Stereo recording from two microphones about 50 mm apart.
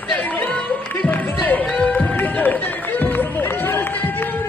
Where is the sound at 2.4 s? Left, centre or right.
Left.